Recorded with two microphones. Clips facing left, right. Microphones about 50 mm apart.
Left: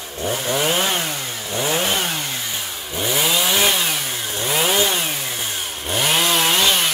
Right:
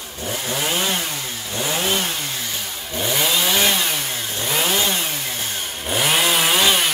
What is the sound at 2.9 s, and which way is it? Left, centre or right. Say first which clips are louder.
Chainsaw: left 1 dB; centre.